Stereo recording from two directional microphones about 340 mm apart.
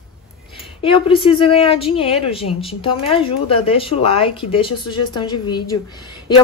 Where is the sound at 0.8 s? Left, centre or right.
Centre.